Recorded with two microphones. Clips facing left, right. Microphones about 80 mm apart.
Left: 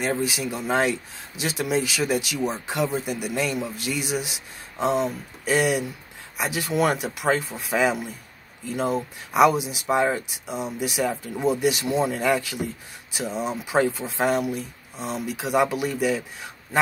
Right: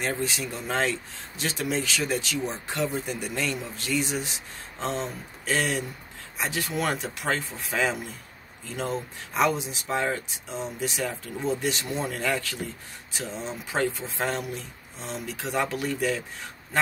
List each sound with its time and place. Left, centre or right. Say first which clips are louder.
0.1 s speech: left 4 dB; centre